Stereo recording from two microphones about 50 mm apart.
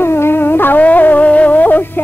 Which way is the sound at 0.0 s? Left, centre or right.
Left.